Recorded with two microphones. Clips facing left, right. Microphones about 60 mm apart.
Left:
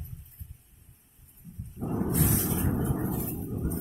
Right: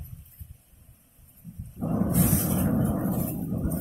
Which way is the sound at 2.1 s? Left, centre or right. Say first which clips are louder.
Right 1 dB; right.